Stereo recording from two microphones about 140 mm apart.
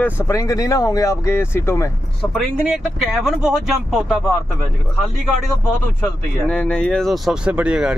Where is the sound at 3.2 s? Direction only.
5° right (ahead or behind).